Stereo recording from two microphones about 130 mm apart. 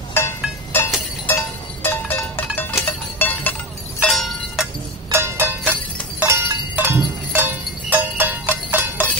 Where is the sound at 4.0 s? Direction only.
Centre (ahead or behind).